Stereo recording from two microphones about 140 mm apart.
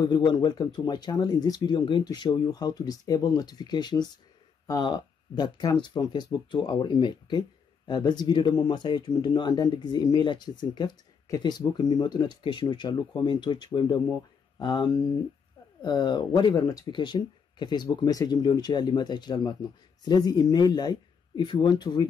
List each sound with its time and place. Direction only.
0.0 s speech: 30° left (ahead or behind)